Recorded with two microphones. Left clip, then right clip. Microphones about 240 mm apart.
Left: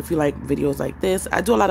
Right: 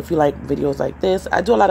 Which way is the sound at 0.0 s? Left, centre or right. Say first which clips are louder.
Right 4 dB; centre.